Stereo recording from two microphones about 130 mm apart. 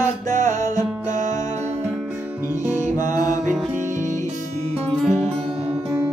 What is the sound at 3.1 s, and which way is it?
Music, 25° left (ahead or behind).